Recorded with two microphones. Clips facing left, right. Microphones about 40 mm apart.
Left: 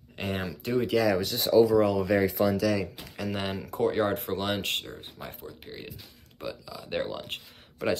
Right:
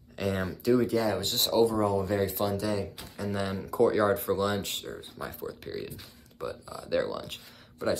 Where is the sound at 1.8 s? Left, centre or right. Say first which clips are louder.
Left 4 dB; left.